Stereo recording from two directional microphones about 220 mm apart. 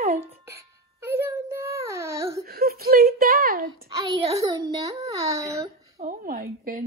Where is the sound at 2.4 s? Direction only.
45° right (ahead or behind).